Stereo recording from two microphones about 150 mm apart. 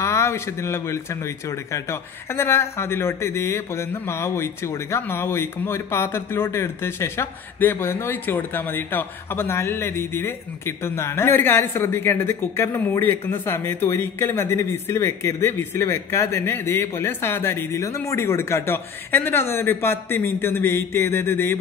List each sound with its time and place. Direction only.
0.0 s speech: 20° left (ahead or behind)